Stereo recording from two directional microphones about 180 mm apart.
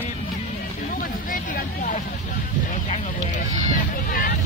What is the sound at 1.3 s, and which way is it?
Vehicle, 50° left (ahead or behind).